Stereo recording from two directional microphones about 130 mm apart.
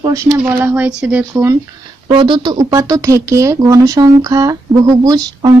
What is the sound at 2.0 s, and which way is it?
Speech, 40° right (ahead or behind).